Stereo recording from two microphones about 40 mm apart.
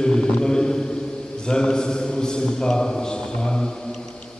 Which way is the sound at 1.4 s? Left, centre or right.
Centre.